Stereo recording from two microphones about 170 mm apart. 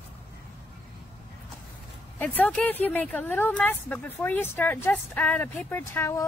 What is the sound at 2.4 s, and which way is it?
Speech, 10° left (ahead or behind).